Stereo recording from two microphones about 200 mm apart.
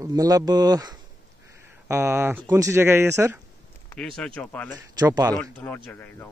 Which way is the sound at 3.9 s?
5° left (ahead or behind).